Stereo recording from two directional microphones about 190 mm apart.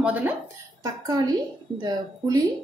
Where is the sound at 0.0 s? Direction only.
10° right (ahead or behind).